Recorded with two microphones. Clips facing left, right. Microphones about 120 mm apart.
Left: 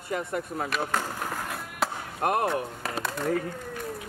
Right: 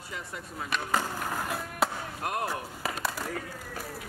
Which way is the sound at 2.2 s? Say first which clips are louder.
Left 7 dB; 50° left (ahead or behind).